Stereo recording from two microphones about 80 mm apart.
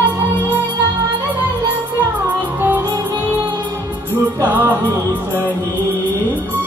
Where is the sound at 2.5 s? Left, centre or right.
Right.